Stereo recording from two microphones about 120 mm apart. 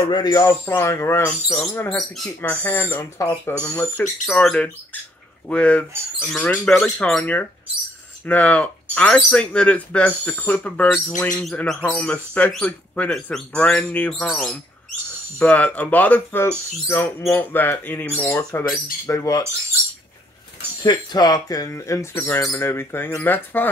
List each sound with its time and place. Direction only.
0.0 s speech: 35° left (ahead or behind)
0.7 s speech: 20° left (ahead or behind)
1.2 s speech: 10° left (ahead or behind)
2.5 s speech: 15° left (ahead or behind)
4.3 s speech: 5° left (ahead or behind); by 19.4 s 30° left (ahead or behind)
20.8 s speech: 35° left (ahead or behind); by 23.7 s 15° left (ahead or behind)